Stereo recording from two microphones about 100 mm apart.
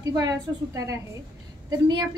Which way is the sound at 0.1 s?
40° right (ahead or behind).